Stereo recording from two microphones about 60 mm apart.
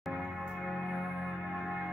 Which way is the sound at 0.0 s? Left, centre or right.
Centre.